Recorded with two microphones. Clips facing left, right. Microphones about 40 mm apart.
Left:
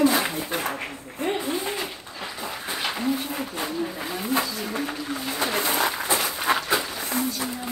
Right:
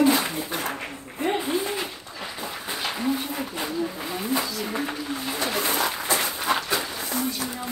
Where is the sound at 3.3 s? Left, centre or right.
Centre.